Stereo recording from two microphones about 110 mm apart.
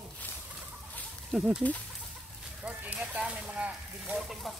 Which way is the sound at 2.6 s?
10° right (ahead or behind).